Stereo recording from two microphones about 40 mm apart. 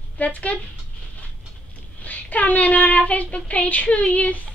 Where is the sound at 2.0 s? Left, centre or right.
Left.